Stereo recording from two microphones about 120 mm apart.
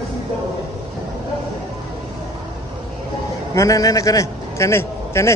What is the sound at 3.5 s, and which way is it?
A man's voice, 25° left (ahead or behind).